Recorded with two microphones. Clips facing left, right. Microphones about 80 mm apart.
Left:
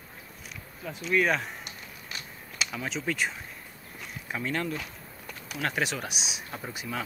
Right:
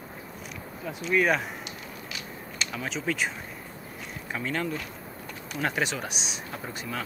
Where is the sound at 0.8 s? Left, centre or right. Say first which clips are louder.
Right 2 dB; centre.